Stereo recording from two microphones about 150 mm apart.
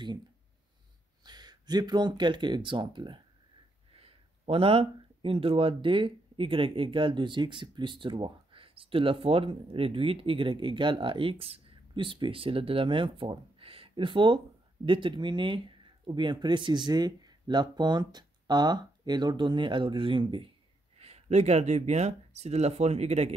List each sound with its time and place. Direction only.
1.2 s speech: 30° right (ahead or behind)
21.0 s speech: 45° right (ahead or behind)